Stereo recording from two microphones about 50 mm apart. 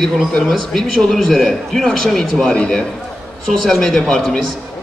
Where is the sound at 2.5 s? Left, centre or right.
Centre.